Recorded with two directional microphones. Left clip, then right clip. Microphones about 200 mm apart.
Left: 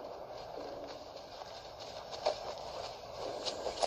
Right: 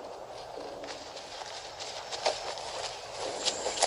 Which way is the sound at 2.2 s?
25° right (ahead or behind).